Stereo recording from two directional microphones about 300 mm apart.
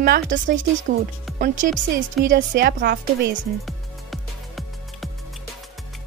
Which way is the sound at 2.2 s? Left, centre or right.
Right.